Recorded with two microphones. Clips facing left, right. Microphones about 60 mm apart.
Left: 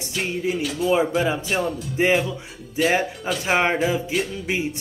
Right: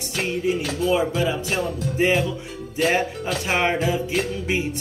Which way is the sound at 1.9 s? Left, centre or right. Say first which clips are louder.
Left 1 dB; left.